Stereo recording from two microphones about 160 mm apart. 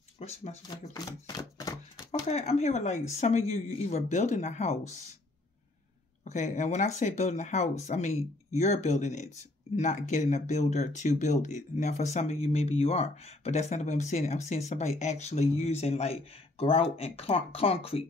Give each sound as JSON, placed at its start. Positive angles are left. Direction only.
{"t": 0.2, "sound": "speech", "side_deg": 45}
{"t": 0.9, "sound": "a sound", "side_deg": 25}
{"t": 2.2, "sound": "speech", "side_deg": 45}
{"t": 6.2, "sound": "speech", "side_deg": 50}